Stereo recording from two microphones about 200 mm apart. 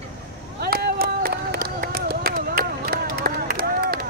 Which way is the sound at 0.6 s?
50° right (ahead or behind).